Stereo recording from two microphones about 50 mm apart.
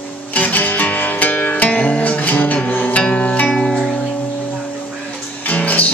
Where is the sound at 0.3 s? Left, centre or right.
Left.